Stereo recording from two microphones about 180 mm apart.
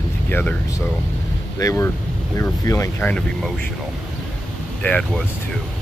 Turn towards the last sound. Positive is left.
turn(degrees=5)  # may be behind; listen again after turning